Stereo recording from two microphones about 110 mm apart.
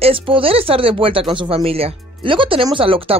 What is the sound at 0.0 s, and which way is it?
Speech, 55° right (ahead or behind).